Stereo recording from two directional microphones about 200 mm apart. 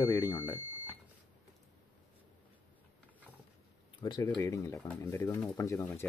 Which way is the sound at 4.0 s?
20° left (ahead or behind).